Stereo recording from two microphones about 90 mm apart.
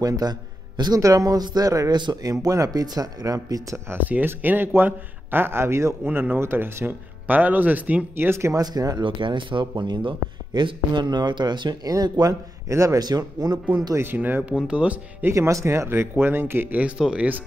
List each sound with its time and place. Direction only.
0.0 s a man's voice: 45° right (ahead or behind)
1.0 s a man's voice: 40° right (ahead or behind)
3.9 s a man's voice: 20° right (ahead or behind)
8.5 s a man's voice: 45° right (ahead or behind)
9.0 s speech: 70° right (ahead or behind)
11.9 s a man's voice: 45° right (ahead or behind)
13.9 s speech: 20° right (ahead or behind)
15.2 s a man's voice: 35° right (ahead or behind); by 17.4 s 15° right (ahead or behind)